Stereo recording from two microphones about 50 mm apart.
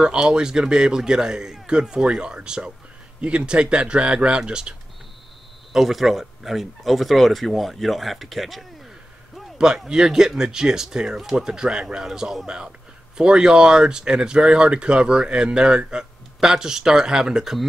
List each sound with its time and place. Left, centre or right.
0.0 s speech: centre
5.7 s speech: centre
9.8 s speech: centre